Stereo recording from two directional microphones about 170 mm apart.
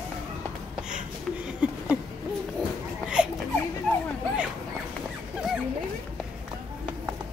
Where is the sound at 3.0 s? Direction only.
5° right (ahead or behind).